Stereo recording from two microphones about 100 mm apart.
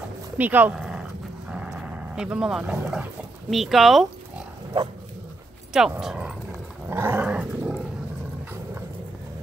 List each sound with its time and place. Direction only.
0.4 s speech: 20° right (ahead or behind)
0.7 s dog: 5° right (ahead or behind)
3.4 s speech: centre (ahead or behind)
5.7 s speech: 5° right (ahead or behind)
6.9 s dog: 20° right (ahead or behind)
7.2 s dog: 10° right (ahead or behind)